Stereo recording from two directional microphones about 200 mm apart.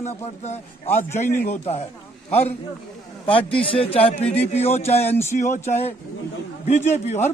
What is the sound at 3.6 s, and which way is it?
Speech, 30° left (ahead or behind).